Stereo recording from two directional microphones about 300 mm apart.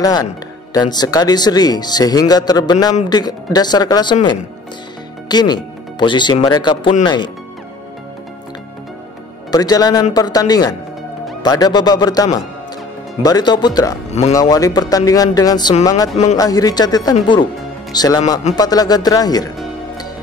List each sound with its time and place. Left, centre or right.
0.0 s speech: centre
9.5 s speech: centre